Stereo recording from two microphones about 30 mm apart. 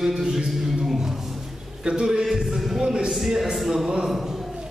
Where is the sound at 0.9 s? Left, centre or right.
Centre.